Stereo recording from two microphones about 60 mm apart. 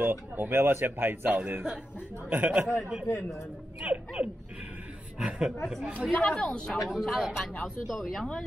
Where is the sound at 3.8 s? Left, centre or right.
Right.